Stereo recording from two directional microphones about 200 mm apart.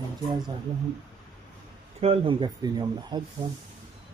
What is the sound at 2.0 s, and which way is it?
Speech, 30° right (ahead or behind).